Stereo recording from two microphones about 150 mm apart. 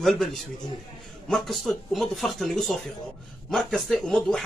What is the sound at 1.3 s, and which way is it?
Speech, centre (ahead or behind).